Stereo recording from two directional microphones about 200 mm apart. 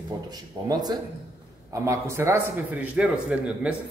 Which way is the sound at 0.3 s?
20° right (ahead or behind).